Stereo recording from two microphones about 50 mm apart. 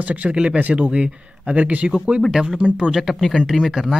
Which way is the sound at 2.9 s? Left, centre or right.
Centre.